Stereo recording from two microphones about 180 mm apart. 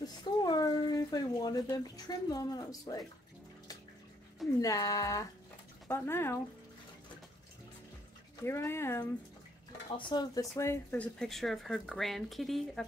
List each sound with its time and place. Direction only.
0.0 s a sound: 25° left (ahead or behind)
4.6 s speech: 20° left (ahead or behind)
8.5 s speech: 15° left (ahead or behind)
9.9 s speech: 25° left (ahead or behind); by 12.8 s centre (ahead or behind)